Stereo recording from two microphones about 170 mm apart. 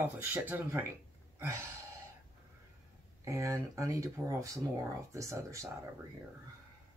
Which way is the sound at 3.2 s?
20° right (ahead or behind).